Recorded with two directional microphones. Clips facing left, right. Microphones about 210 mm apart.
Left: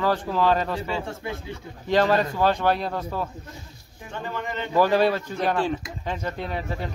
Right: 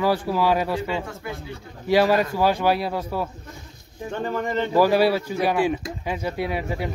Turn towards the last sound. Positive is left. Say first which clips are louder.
# right 4 dB
turn(degrees=-10)  # may be behind; listen again after turning